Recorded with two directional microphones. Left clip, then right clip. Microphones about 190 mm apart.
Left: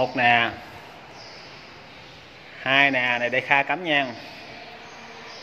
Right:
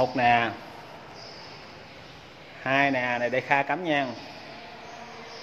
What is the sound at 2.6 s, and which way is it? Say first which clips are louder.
A man's voice: left 4 dB; centre (ahead or behind).